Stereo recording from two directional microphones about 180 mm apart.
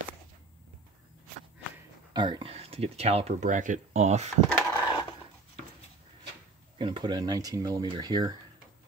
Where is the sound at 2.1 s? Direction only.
25° right (ahead or behind).